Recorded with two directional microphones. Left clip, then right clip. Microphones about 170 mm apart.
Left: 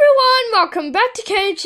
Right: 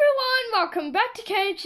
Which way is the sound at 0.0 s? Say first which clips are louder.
Left 9 dB; 55° left (ahead or behind).